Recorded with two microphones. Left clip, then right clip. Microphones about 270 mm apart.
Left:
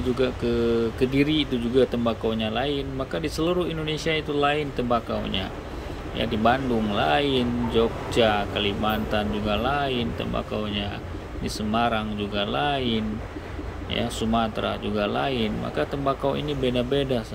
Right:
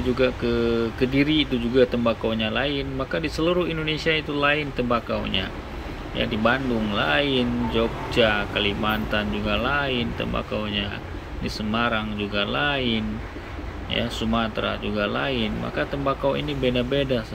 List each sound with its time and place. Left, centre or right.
0.2 s speech: centre